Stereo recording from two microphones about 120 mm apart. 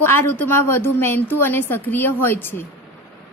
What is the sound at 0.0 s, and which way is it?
A woman's voice, 20° left (ahead or behind).